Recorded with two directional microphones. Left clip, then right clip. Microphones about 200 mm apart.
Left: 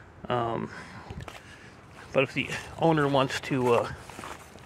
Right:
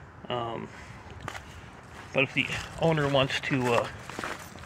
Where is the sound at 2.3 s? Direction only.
35° left (ahead or behind).